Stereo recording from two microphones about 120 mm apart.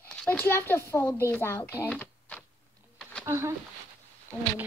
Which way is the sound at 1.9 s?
10° left (ahead or behind).